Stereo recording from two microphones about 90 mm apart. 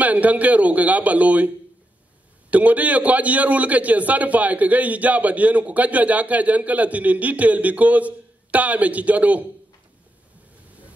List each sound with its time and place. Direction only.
0.0 s a man's voice: 15° right (ahead or behind)
2.5 s a man's voice: 15° right (ahead or behind)